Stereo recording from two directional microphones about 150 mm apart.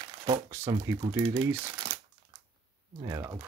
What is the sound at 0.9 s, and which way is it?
Speech, 30° right (ahead or behind).